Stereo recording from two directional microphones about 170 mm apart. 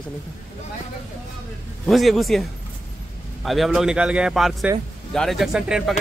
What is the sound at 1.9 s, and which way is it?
Speech, centre (ahead or behind).